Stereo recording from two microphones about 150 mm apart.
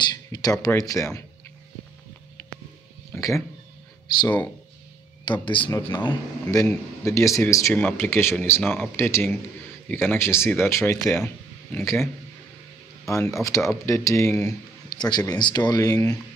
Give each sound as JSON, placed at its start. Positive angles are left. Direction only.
{"t": 0.0, "sound": "a sound", "side_deg": 25}
{"t": 0.7, "sound": "speech", "side_deg": 20}
{"t": 3.2, "sound": "speech", "side_deg": 20}
{"t": 5.4, "sound": "speech", "side_deg": 35}
{"t": 13.1, "sound": "speech", "side_deg": 20}